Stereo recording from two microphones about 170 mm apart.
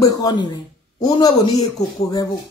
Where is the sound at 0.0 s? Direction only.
25° left (ahead or behind).